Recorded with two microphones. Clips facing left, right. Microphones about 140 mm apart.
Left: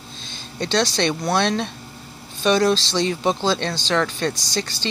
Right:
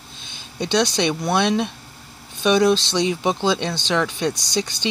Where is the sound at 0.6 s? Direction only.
15° right (ahead or behind).